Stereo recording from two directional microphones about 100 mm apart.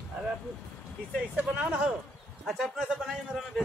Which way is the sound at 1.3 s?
15° right (ahead or behind).